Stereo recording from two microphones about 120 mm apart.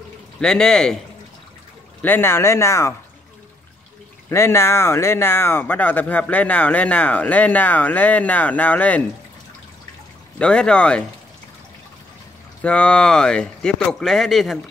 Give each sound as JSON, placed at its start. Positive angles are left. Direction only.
{"t": 0.4, "sound": "speech", "side_deg": 5}
{"t": 2.0, "sound": "speech", "side_deg": 15}
{"t": 4.3, "sound": "speech", "side_deg": 20}
{"t": 10.4, "sound": "speech", "side_deg": 10}
{"t": 12.6, "sound": "speech", "side_deg": 10}